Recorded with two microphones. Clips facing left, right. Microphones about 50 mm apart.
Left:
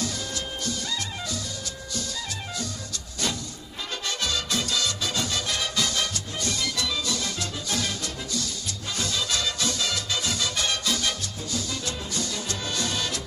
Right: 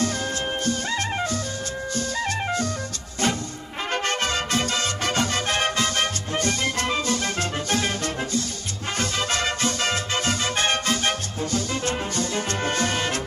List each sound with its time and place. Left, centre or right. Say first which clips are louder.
0.7 s music: right 6 dB; right
3.9 s music: right 5 dB; right